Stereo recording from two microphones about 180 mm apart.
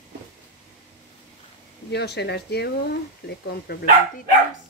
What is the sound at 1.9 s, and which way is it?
Speech, 65° left (ahead or behind).